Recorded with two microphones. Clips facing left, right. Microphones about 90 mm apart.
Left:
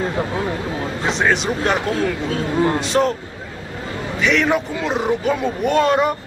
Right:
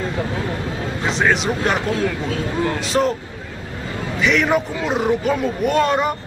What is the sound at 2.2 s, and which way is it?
Speech, 35° left (ahead or behind).